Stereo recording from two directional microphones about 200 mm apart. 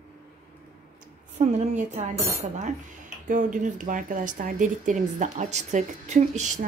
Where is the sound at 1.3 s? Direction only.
35° right (ahead or behind).